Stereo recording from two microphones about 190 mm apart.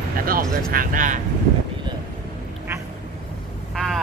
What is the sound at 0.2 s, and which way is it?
Speech, 50° right (ahead or behind).